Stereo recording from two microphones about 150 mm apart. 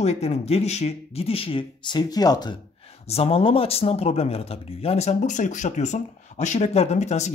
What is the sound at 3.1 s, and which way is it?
A man's voice, 40° left (ahead or behind).